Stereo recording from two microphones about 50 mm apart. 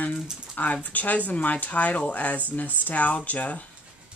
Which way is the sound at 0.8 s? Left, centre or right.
Left.